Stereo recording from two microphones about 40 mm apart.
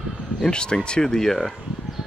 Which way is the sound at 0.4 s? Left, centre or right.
Left.